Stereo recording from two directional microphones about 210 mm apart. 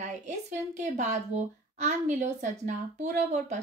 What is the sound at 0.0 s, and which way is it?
A woman's voice, 35° right (ahead or behind).